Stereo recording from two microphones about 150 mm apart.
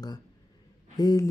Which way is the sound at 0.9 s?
25° left (ahead or behind).